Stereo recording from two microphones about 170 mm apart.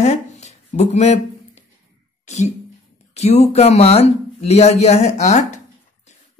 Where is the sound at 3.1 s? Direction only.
40° left (ahead or behind).